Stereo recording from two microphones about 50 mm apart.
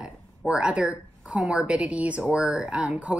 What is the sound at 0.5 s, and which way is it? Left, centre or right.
A woman's voice, right.